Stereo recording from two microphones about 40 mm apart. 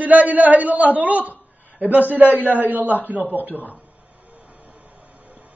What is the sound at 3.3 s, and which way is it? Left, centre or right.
Speech, left.